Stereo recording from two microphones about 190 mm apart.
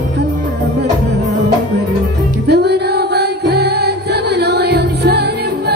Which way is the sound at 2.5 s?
60° right (ahead or behind).